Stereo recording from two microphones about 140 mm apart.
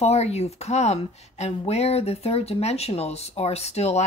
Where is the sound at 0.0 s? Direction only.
50° left (ahead or behind).